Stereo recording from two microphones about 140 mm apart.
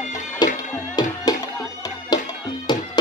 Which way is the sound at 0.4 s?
30° left (ahead or behind).